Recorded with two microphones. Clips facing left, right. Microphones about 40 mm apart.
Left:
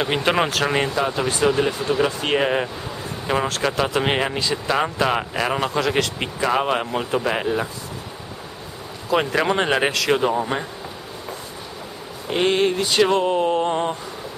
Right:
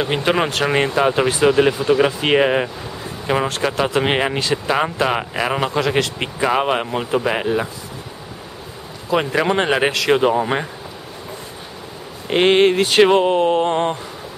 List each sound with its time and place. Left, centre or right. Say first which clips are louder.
0.0 s speech: right 2 dB; centre
0.5 s speech: right 3 dB; centre
1.3 s speech: right 5 dB; centre
9.1 s speech: right 2 dB; centre
10.2 s speech: right 4 dB; right
12.3 s speech: right 5 dB; right
13.0 s speech: right 4 dB; right
13.4 s speech: right 3 dB; centre